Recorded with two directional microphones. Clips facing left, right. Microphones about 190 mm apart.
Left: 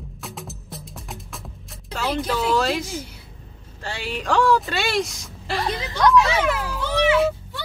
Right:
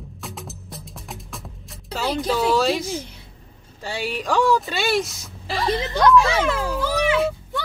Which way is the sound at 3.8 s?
10° right (ahead or behind).